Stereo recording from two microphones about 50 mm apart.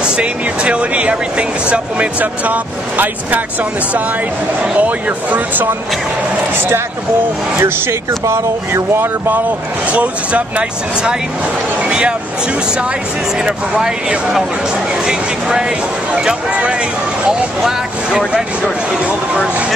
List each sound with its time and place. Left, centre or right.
0.0 s speech: centre; by 3.4 s right
4.7 s speech: right
6.5 s speech: right
8.1 s speech: right
9.8 s speech: right
11.8 s a sound: centre
13.4 s speech: centre
17.6 s speech: centre